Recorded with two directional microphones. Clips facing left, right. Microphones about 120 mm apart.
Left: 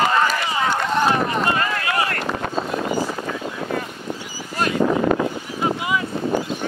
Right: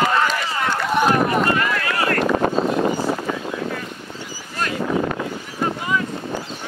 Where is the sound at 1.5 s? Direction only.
30° left (ahead or behind).